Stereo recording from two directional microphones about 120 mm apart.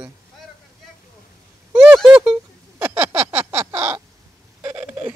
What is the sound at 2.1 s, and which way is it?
Speech, 5° right (ahead or behind).